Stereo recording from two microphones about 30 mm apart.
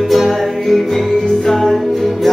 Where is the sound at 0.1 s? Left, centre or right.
Centre.